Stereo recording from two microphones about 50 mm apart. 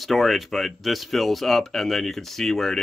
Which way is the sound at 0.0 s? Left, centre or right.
Centre.